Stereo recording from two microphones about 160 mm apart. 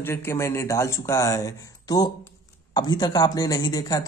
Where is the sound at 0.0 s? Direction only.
15° left (ahead or behind).